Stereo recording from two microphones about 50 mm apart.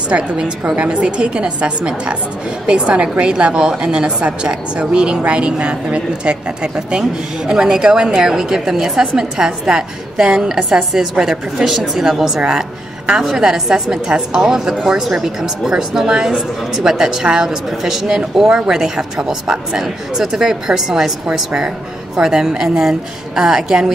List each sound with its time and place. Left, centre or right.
0.1 s a woman's voice: right